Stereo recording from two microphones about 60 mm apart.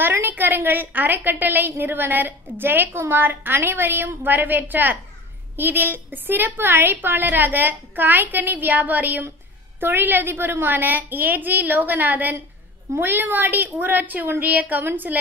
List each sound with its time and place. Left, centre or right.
0.0 s a woman's voice: right